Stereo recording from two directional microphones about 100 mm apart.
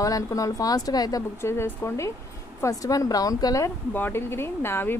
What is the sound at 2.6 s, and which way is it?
Speech, 35° left (ahead or behind).